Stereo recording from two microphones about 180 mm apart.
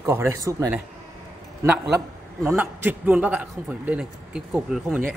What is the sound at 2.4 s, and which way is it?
A man's voice, 15° right (ahead or behind).